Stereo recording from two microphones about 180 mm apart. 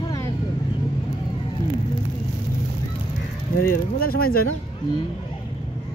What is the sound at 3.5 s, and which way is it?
Speech, 55° left (ahead or behind).